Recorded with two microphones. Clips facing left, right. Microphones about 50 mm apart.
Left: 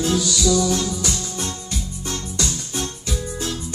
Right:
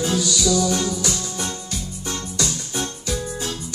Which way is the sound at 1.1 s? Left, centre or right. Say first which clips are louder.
Even; centre.